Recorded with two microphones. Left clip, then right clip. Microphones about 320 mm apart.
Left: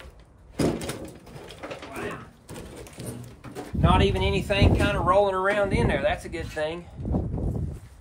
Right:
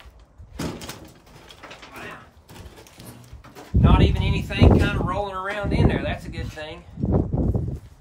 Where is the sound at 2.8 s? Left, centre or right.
Centre.